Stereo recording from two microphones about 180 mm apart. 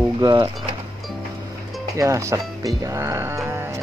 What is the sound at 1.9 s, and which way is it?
Speech, 15° right (ahead or behind).